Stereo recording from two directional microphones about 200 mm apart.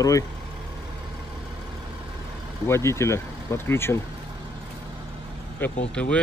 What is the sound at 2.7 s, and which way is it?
Speech, 15° left (ahead or behind).